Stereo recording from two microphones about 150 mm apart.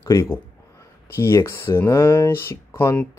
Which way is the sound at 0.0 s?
20° left (ahead or behind).